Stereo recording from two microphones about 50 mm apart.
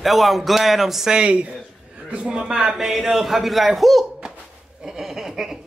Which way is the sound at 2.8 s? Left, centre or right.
Centre.